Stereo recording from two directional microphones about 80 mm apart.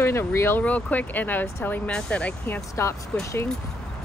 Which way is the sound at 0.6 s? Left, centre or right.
Centre.